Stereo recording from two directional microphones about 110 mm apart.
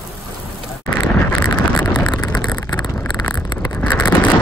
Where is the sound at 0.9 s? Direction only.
20° left (ahead or behind).